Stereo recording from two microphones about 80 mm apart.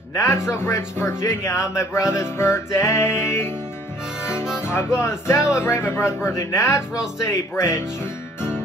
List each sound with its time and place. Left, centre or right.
0.1 s speech: left
4.6 s speech: left